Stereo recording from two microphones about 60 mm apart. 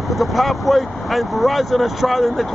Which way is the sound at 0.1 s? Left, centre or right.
Centre.